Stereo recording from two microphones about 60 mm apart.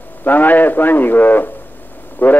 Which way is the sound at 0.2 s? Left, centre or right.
Left.